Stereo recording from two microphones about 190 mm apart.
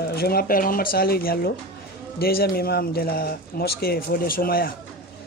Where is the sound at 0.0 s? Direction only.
55° left (ahead or behind).